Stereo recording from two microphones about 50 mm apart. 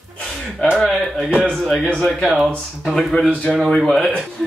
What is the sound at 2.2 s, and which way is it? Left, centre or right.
Speech, centre.